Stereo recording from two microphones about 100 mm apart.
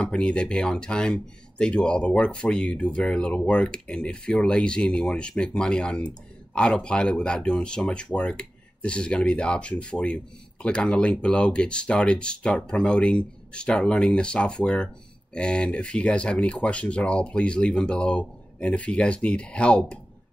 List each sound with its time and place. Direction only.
0.0 s speech: 10° left (ahead or behind)